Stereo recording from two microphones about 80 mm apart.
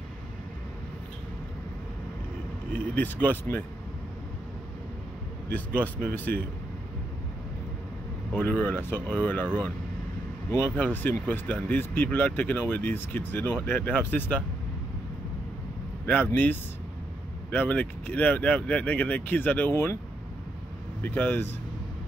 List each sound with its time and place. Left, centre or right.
2.8 s speech: left
5.5 s speech: left
8.4 s speech: left
10.8 s speech: left
16.3 s speech: left
21.0 s speech: left